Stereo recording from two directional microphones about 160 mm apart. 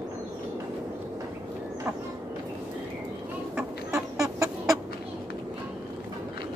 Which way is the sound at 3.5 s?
20° right (ahead or behind).